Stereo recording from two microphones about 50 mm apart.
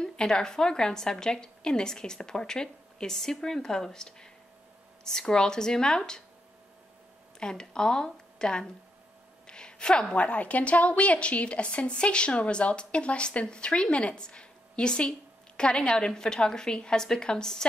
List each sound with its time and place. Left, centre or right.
0.0 s a woman's voice: centre
7.3 s a woman's voice: centre